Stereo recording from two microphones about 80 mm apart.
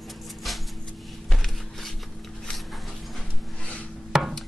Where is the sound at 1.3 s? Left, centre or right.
Centre.